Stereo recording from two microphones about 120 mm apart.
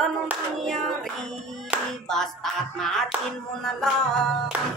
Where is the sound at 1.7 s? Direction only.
15° right (ahead or behind).